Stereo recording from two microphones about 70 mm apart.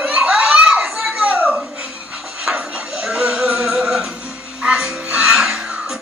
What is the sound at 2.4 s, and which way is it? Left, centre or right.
Music, centre.